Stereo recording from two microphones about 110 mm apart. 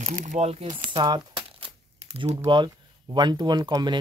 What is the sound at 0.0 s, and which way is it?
Speech, 85° right.